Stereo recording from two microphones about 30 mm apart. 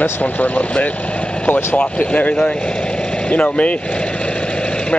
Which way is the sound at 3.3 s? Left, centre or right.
Left.